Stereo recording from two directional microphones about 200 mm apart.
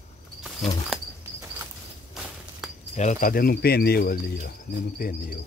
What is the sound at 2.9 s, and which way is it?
Speech, 35° left (ahead or behind).